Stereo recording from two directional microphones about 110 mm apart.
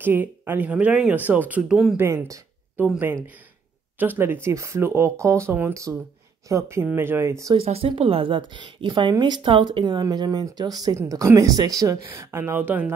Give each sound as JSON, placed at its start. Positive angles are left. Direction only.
{"t": 0.0, "sound": "speech", "side_deg": -15}
{"t": 2.8, "sound": "speech", "side_deg": -15}
{"t": 7.5, "sound": "a woman's voice", "side_deg": -65}